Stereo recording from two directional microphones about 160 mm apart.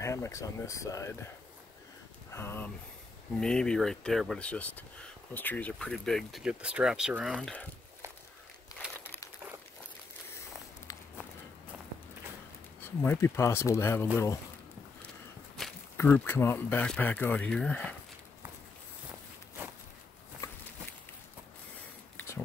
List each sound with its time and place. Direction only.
0.0 s speech: 20° left (ahead or behind)
2.3 s speech: 15° left (ahead or behind); by 7.5 s 5° right (ahead or behind)
9.0 s crumpling: 15° left (ahead or behind)
12.8 s speech: 15° left (ahead or behind)
15.6 s walk: centre (ahead or behind)
16.0 s speech: 15° left (ahead or behind)
22.1 s a sound: 15° left (ahead or behind)